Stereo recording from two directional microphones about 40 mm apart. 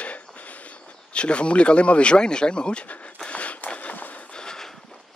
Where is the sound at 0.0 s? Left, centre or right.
Left.